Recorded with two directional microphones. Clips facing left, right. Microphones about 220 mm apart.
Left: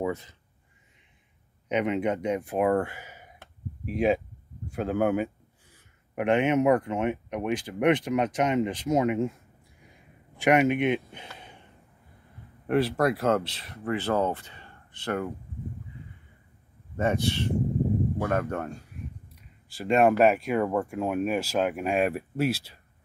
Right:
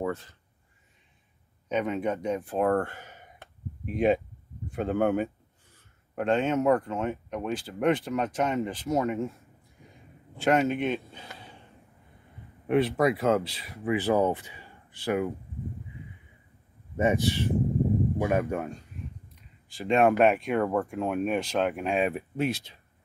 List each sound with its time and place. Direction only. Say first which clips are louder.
1.7 s speech: left 2 dB; 20° left (ahead or behind)
6.1 s speech: left 2 dB; 15° left (ahead or behind)
10.4 s a man's voice: left 2 dB; 15° left (ahead or behind)
12.6 s speech: even; centre (ahead or behind)
16.9 s speech: right 1 dB; 15° right (ahead or behind)
19.8 s speech: left 1 dB; centre (ahead or behind)